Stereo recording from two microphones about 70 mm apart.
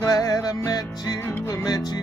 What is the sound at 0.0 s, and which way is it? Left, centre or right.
Music, left.